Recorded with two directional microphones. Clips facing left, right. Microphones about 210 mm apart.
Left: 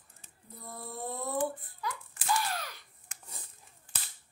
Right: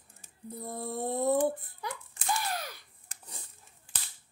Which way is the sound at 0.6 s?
25° right (ahead or behind).